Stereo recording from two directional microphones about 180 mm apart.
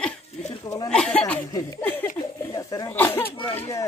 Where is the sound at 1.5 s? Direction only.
20° left (ahead or behind).